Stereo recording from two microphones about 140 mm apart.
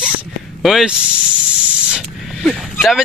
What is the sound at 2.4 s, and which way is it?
Speech, centre (ahead or behind).